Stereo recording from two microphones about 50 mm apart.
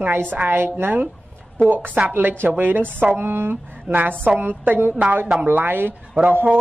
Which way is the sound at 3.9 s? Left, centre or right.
Right.